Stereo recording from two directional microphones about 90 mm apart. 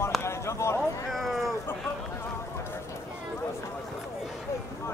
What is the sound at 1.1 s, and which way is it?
Cat, centre (ahead or behind).